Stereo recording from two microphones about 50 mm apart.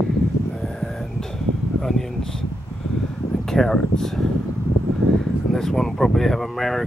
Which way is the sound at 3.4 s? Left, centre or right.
Centre.